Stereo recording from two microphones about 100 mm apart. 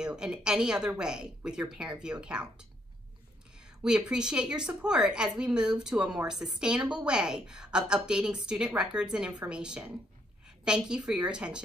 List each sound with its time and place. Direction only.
0.0 s a woman's voice: 10° right (ahead or behind)
3.8 s a woman's voice: 10° right (ahead or behind)